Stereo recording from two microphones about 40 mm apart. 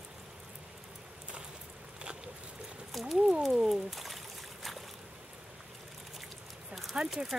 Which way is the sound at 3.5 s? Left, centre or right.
Centre.